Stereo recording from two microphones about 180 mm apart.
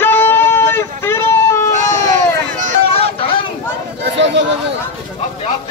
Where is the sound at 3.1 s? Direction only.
30° left (ahead or behind).